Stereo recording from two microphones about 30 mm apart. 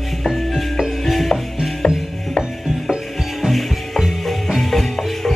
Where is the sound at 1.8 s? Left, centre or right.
Left.